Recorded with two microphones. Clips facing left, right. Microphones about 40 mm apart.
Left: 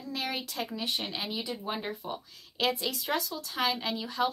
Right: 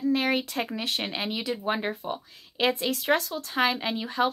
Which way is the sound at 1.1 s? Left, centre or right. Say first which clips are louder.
Right 5 dB; right.